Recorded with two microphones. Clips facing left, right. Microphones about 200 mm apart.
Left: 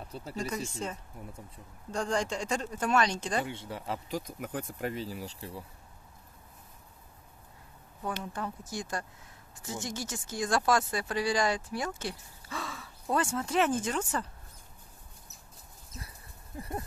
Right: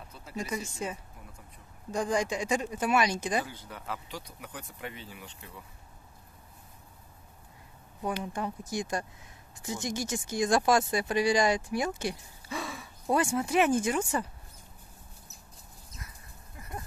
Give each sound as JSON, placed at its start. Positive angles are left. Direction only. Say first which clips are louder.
{"t": 0.1, "sound": "speech", "louder": "left 1 dB", "side_deg": 35}
{"t": 0.8, "sound": "speech", "louder": "right 1 dB", "side_deg": -10}
{"t": 3.4, "sound": "speech", "louder": "left 4 dB", "side_deg": 25}
{"t": 4.1, "sound": "speech", "louder": "left 7 dB", "side_deg": 50}
{"t": 8.0, "sound": "speech", "louder": "right 3 dB", "side_deg": -15}
{"t": 16.5, "sound": "a sound", "louder": "left 5 dB", "side_deg": 30}